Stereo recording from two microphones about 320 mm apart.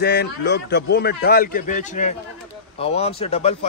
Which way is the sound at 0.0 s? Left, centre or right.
Left.